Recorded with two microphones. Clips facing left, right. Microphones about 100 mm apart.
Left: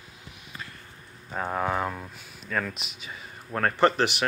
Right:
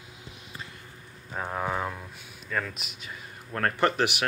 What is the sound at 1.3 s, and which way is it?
Speech, 5° left (ahead or behind).